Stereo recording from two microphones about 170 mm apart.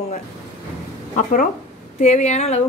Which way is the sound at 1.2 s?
45° left (ahead or behind).